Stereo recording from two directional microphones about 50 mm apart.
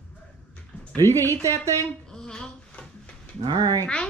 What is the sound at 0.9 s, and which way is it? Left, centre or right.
Speech, left.